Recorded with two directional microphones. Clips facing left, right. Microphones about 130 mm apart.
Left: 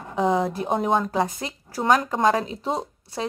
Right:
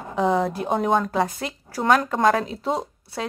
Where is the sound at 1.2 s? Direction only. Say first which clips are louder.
Right 2 dB; 15° left (ahead or behind).